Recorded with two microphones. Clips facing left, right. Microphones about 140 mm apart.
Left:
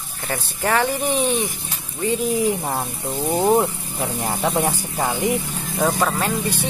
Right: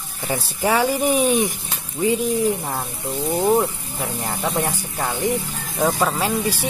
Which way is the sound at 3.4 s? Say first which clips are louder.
Left 1 dB; 15° left (ahead or behind).